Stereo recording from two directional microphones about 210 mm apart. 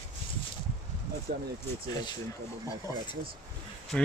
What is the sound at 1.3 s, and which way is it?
Speech, 45° right (ahead or behind).